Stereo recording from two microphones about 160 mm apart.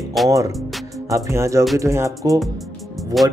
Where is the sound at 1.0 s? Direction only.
20° right (ahead or behind).